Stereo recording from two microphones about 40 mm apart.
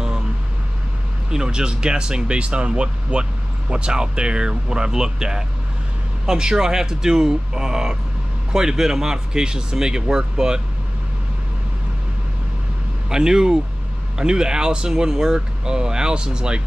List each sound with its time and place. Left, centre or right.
1.3 s speech: centre
13.1 s speech: centre